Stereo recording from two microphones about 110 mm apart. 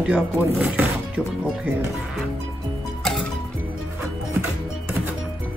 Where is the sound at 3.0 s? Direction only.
5° left (ahead or behind).